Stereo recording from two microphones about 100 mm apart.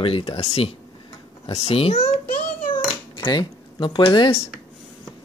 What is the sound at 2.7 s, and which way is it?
Cat, 50° left (ahead or behind).